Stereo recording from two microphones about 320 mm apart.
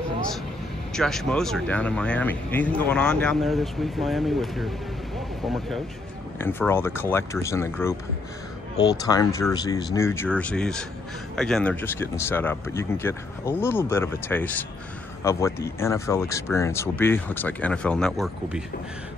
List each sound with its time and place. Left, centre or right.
0.9 s speech: centre